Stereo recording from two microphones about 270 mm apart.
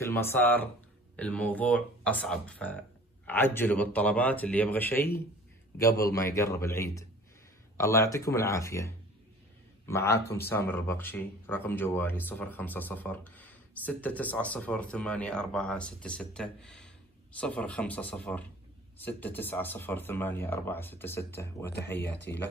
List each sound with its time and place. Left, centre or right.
0.1 s speech: centre